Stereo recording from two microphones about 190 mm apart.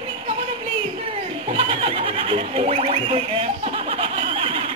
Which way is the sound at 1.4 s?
30° right (ahead or behind).